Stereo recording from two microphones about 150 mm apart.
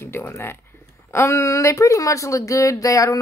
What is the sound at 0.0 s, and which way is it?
Speech, 15° left (ahead or behind).